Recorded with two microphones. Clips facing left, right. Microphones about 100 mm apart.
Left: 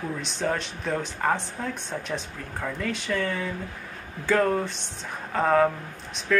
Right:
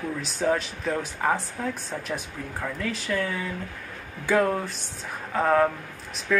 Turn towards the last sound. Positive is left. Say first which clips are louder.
# left 1 dB
turn(degrees=-5)  # may be behind; listen again after turning